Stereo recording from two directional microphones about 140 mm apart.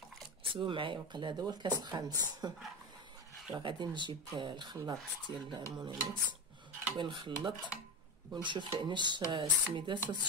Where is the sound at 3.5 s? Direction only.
35° right (ahead or behind).